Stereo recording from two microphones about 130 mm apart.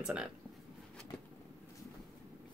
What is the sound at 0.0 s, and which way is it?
Speech, 5° right (ahead or behind).